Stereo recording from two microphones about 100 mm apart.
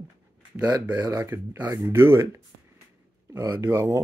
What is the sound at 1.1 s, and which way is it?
Speech, 25° right (ahead or behind).